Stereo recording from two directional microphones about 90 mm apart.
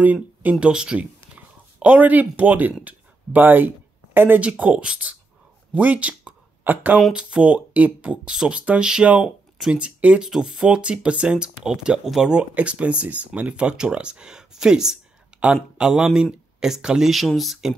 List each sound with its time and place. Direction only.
0.0 s speech: 20° right (ahead or behind)
7.0 s speech: 10° right (ahead or behind)